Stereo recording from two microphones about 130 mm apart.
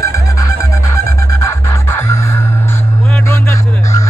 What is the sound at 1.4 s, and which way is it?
Music, 20° left (ahead or behind).